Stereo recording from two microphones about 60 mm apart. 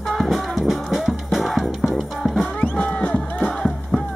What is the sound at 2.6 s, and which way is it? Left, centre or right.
Music, left.